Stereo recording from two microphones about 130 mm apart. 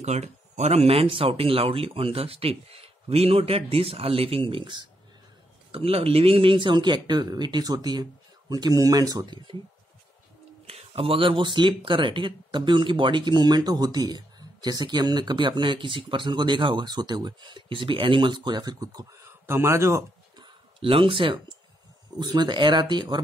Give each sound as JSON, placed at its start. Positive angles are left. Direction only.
{"t": 0.0, "sound": "speech", "side_deg": -60}
{"t": 10.7, "sound": "speech", "side_deg": -45}
{"t": 20.3, "sound": "a sound", "side_deg": -40}
{"t": 22.2, "sound": "speech", "side_deg": -35}